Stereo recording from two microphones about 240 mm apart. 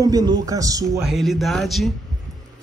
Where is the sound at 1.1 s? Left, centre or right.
Centre.